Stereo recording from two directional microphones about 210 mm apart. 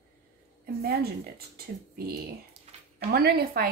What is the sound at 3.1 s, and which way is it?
Speech, 45° right (ahead or behind).